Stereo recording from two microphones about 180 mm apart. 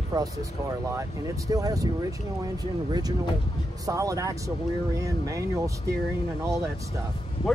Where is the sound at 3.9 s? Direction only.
20° right (ahead or behind).